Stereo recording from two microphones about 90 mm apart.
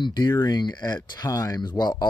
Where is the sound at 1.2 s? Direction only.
40° left (ahead or behind).